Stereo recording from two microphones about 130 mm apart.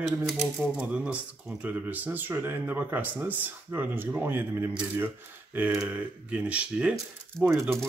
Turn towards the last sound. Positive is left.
turn(degrees=0)  # may be behind; listen again after turning